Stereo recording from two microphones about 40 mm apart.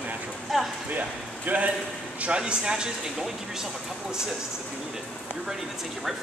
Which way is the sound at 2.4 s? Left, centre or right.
Right.